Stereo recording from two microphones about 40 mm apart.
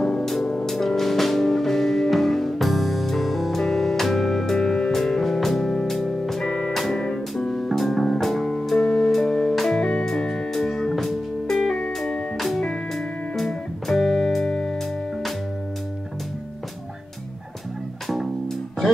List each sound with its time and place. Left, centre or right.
0.2 s music: centre
8.7 s music: centre
9.1 s music: centre
9.8 s music: left
18.0 s music: centre